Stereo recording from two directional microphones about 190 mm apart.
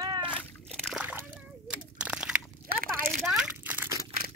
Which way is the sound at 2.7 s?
50° right (ahead or behind).